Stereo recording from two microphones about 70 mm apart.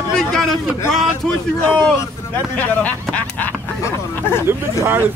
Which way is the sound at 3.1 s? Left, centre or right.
Left.